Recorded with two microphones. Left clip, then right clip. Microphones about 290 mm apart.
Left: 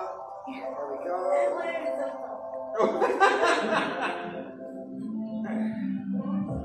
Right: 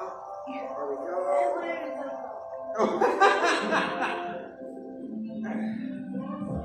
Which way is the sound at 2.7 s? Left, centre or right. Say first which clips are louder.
Even; right.